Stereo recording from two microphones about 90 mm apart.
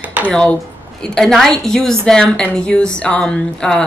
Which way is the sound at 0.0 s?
15° right (ahead or behind).